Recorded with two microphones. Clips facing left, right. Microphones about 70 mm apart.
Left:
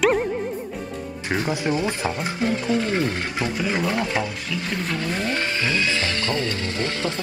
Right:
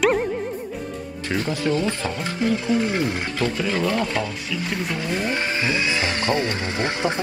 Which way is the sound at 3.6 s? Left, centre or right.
Centre.